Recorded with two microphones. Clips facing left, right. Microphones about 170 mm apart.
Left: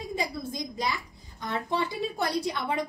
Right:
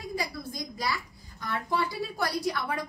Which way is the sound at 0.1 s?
25° left (ahead or behind).